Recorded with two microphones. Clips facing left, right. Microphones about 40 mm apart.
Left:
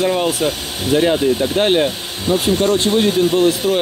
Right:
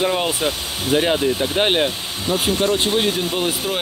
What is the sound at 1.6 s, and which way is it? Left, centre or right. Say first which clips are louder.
Speech: left 3 dB; centre.